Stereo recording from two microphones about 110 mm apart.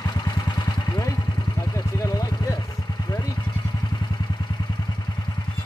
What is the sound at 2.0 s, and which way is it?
Vehicle, 30° left (ahead or behind).